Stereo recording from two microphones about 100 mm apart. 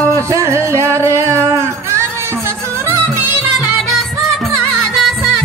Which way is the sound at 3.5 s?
Centre (ahead or behind).